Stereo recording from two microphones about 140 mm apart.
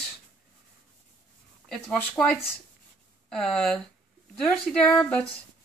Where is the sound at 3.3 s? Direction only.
5° left (ahead or behind).